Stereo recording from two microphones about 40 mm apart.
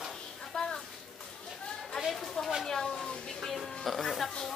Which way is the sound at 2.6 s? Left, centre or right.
Centre.